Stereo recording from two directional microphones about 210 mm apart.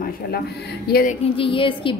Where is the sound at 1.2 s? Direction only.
25° left (ahead or behind).